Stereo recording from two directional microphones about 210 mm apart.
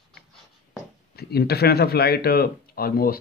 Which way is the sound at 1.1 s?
50° left (ahead or behind).